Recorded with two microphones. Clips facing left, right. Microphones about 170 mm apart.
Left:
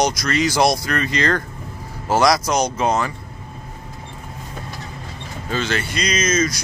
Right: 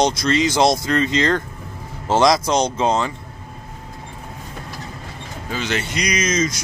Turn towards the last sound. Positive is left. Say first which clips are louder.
# left 1 dB
turn(degrees=-15)  # may be behind; listen again after turning